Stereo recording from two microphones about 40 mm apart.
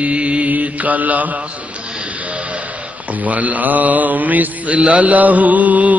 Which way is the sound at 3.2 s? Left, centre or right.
Right.